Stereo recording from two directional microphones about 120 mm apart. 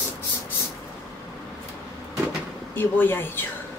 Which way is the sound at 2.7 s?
15° left (ahead or behind).